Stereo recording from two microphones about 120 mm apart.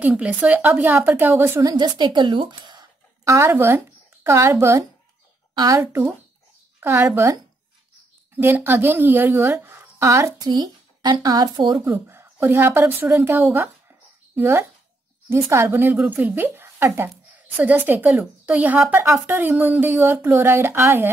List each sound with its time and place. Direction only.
0.0 s a woman's voice: 10° right (ahead or behind); by 2.9 s 40° right (ahead or behind)
3.3 s speech: 20° right (ahead or behind)
5.5 s a woman's voice: 35° right (ahead or behind)
5.8 s a woman's voice: 20° right (ahead or behind)
8.4 s a woman's voice: 15° right (ahead or behind)
10.5 s speech: 35° right (ahead or behind)
11.8 s a woman's voice: 20° right (ahead or behind)